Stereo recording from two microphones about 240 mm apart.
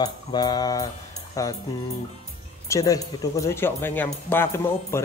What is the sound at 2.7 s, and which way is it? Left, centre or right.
Speech, centre.